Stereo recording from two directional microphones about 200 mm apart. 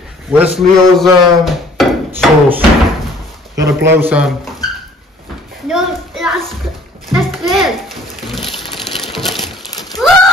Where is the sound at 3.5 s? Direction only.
60° right (ahead or behind).